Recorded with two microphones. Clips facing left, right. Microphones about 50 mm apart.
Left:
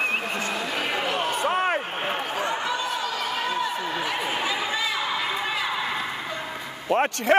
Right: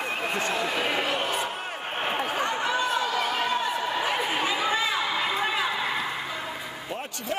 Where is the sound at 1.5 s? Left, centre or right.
Left.